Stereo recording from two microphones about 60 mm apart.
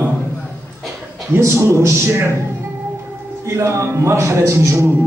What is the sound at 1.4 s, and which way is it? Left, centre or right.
Speech, right.